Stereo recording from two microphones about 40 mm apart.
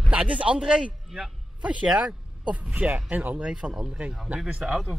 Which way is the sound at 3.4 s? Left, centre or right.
Right.